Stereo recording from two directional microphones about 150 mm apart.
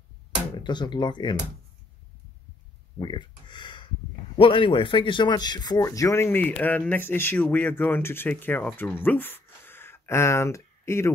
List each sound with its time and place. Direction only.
0.6 s speech: 30° left (ahead or behind)
3.0 s a sound: 30° left (ahead or behind)
4.4 s speech: 35° left (ahead or behind); by 11.1 s 20° left (ahead or behind)